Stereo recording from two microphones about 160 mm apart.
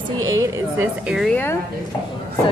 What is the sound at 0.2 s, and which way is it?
Speech, 20° right (ahead or behind).